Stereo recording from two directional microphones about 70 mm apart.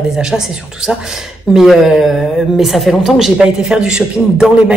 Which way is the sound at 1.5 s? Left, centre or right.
Centre.